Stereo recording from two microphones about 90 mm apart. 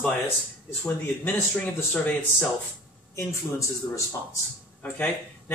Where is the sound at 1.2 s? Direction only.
15° left (ahead or behind).